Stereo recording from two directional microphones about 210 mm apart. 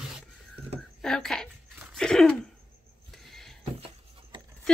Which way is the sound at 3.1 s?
Centre (ahead or behind).